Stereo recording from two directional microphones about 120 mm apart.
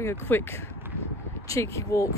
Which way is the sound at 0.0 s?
20° left (ahead or behind).